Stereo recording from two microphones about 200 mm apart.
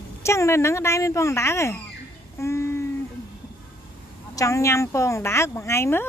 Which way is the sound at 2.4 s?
15° left (ahead or behind).